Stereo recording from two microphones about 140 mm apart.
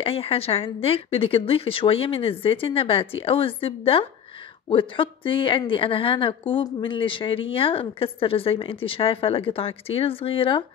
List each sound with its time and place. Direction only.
0.0 s a woman's voice: 40° left (ahead or behind)